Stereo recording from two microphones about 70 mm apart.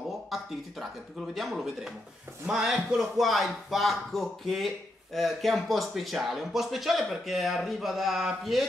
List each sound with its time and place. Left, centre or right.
0.3 s speech: centre